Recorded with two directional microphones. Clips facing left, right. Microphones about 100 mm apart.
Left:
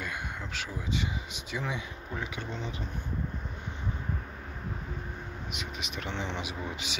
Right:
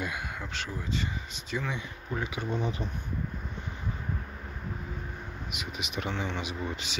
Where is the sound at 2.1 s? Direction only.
5° right (ahead or behind).